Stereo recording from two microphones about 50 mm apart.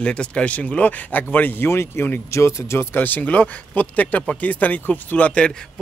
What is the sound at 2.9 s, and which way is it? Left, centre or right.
Speech, left.